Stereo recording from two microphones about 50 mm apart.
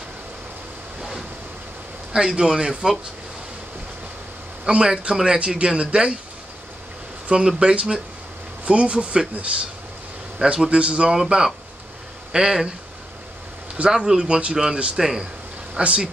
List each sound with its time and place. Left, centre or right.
2.1 s a man's voice: centre
4.6 s a man's voice: centre
7.5 s a man's voice: centre
13.8 s a man's voice: centre